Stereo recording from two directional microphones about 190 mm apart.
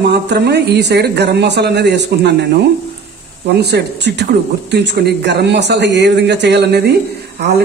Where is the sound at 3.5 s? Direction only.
60° right (ahead or behind).